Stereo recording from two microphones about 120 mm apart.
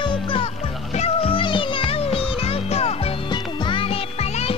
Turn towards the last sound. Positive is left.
turn(degrees=45)  # may be behind; listen again after turning